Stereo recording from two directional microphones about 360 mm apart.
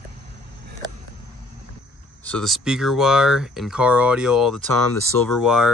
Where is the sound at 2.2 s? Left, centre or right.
Centre.